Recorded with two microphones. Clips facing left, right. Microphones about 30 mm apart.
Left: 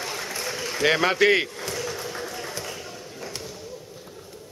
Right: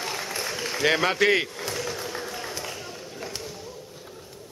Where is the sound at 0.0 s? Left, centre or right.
Centre.